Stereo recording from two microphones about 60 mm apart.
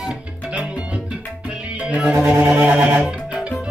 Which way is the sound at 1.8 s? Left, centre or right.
Centre.